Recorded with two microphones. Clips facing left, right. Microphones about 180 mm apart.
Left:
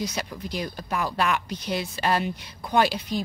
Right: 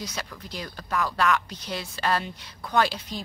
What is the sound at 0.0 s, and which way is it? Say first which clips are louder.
Speech: left 5 dB; 15° left (ahead or behind).